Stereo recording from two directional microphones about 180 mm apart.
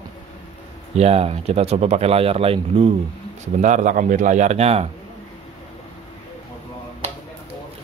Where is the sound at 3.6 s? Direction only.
45° right (ahead or behind).